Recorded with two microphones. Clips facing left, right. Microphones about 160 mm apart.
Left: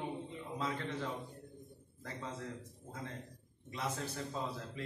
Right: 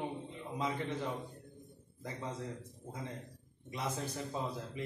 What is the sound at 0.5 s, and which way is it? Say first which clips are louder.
Speech: right 2 dB; 15° right (ahead or behind).